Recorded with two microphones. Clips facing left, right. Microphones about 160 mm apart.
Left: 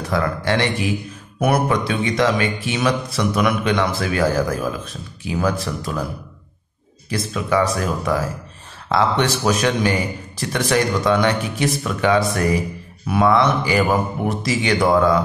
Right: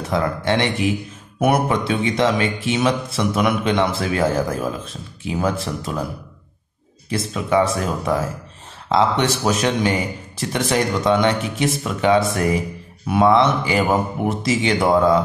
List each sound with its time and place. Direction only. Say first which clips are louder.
0.1 s speech: even; 20° right (ahead or behind)
7.1 s speech: even; 25° right (ahead or behind)